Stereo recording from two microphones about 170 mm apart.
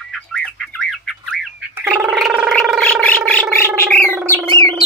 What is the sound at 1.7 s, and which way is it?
Gargling, 10° right (ahead or behind).